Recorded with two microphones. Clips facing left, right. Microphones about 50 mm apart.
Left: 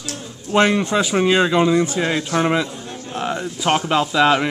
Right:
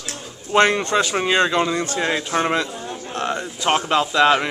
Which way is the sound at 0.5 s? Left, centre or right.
Centre.